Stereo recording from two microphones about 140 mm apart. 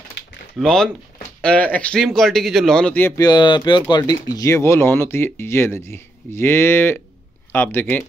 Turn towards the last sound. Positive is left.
turn(degrees=15)  # may be behind; listen again after turning